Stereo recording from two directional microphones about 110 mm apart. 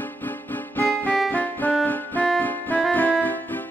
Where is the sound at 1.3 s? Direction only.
15° left (ahead or behind).